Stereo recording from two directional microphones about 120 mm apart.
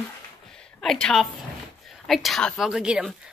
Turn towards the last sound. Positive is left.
turn(degrees=-5)  # may be behind; listen again after turning